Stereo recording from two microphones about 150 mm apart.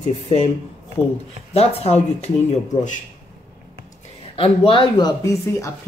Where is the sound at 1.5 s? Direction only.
45° left (ahead or behind).